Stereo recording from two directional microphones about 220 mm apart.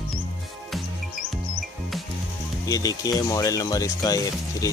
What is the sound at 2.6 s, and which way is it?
Speech, 15° left (ahead or behind).